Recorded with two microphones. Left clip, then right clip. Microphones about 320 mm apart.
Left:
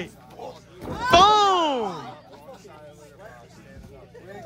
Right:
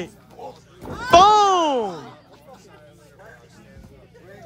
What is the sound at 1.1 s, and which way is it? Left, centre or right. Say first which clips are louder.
Babbling: right 3 dB; centre.